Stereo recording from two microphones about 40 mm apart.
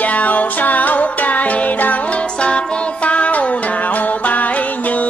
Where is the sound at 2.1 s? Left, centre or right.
Left.